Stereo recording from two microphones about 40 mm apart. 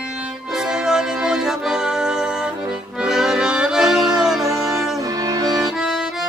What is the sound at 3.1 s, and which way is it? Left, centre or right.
Accordion, centre.